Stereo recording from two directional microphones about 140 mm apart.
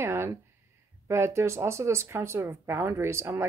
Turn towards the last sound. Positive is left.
turn(degrees=-20)  # may be behind; listen again after turning